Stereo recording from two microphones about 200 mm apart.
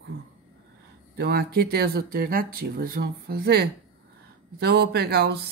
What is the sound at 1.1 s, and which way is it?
Speech, 55° right (ahead or behind).